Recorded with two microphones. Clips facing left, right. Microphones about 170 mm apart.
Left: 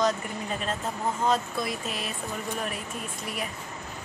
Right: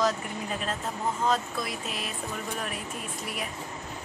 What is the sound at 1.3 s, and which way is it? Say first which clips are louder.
Speech: left 3 dB; centre (ahead or behind).